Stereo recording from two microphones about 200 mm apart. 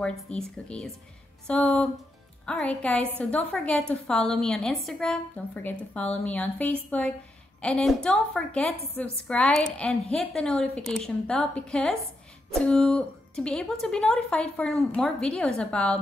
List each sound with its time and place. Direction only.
0.0 s a woman's voice: 5° left (ahead or behind)